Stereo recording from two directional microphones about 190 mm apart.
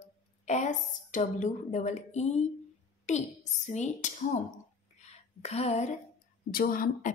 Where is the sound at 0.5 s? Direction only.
40° left (ahead or behind).